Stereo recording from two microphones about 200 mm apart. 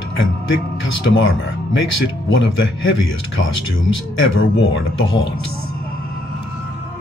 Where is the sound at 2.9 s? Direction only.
70° left (ahead or behind).